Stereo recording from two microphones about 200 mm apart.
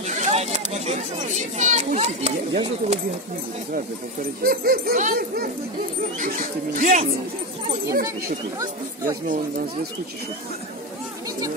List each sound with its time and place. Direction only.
0.0 s speech: 35° right (ahead or behind)
3.7 s speech: 45° right (ahead or behind)
8.5 s speech: 15° right (ahead or behind)